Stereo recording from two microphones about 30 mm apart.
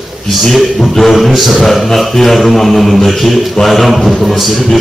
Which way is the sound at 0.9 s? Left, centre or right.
Centre.